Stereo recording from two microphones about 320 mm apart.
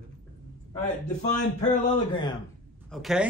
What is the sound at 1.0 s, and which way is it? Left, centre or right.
A man's voice, left.